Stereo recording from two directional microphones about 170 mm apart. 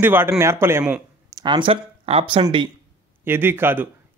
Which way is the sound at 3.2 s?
15° right (ahead or behind).